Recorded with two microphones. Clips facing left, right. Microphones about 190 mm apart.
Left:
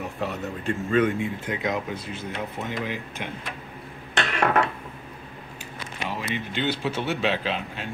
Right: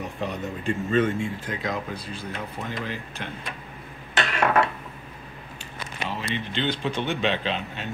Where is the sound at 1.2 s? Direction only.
20° left (ahead or behind).